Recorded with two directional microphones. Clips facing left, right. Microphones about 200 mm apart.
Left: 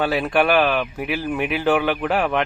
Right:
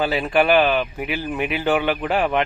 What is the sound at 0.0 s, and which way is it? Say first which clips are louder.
Speech: even; centre (ahead or behind).